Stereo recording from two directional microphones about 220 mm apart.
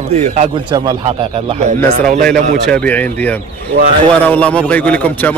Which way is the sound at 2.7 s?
5° left (ahead or behind).